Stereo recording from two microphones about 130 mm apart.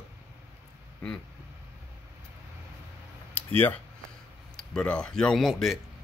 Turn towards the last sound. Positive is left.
turn(degrees=0)  # may be behind; listen again after turning